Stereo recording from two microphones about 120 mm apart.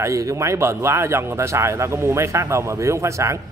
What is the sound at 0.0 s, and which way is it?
A man's voice, 25° right (ahead or behind).